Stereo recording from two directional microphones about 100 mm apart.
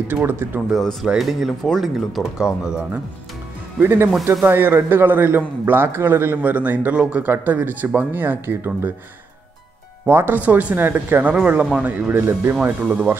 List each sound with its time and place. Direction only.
0.1 s a man's voice: 20° right (ahead or behind)
0.7 s speech: 5° right (ahead or behind)
3.8 s a man's voice: 20° right (ahead or behind)
4.1 s speech: 5° right (ahead or behind)
4.5 s a man's voice: 20° right (ahead or behind)
10.0 s a man's voice: 20° right (ahead or behind)